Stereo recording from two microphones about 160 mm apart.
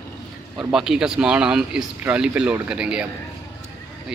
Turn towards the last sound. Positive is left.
turn(degrees=-5)  # may be behind; listen again after turning